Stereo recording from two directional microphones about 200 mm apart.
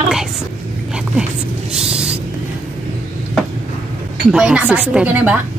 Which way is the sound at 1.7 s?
5° right (ahead or behind).